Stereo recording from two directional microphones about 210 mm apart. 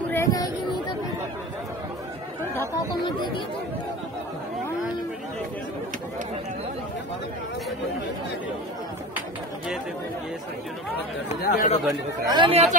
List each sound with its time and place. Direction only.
0.1 s a sound: 15° left (ahead or behind)
2.7 s speech: 20° left (ahead or behind)
11.4 s speech: 35° left (ahead or behind)
12.3 s speech: 25° right (ahead or behind)